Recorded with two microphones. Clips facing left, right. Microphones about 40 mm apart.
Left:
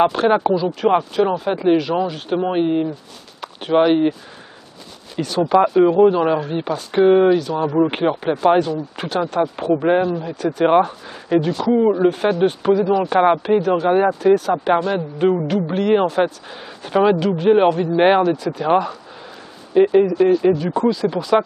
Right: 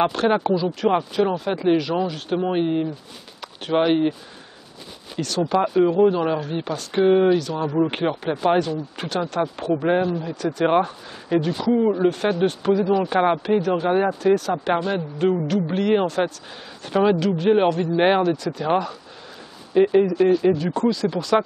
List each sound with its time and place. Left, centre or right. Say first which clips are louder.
0.1 s speech: left 4 dB; centre
5.2 s speech: left 5 dB; centre
15.1 s speech: left 3 dB; centre